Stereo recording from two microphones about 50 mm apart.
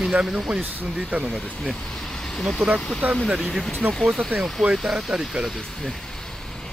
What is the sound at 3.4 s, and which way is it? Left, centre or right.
Speech, centre.